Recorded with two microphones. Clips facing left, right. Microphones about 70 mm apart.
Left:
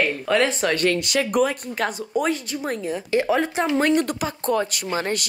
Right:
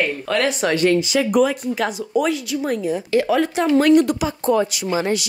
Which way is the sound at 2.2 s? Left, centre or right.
Left.